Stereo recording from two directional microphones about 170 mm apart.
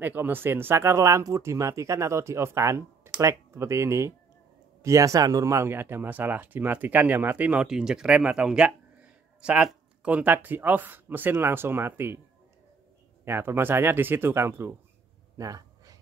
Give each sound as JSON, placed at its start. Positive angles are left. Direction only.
{"t": 0.0, "sound": "speech", "side_deg": -10}
{"t": 13.2, "sound": "speech", "side_deg": -15}
{"t": 15.3, "sound": "a sound", "side_deg": -20}